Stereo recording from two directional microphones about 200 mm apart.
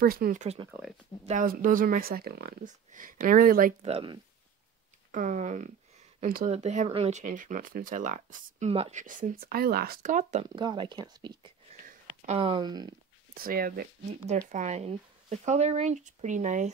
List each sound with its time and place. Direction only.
0.0 s speech: 45° right (ahead or behind)
3.8 s speech: 25° right (ahead or behind)
5.1 s speech: 40° right (ahead or behind)
10.5 s speech: 25° right (ahead or behind)
11.8 s a sound: 40° right (ahead or behind); by 12.9 s 20° right (ahead or behind)
13.3 s speech: 45° right (ahead or behind)
14.5 s speech: 35° right (ahead or behind)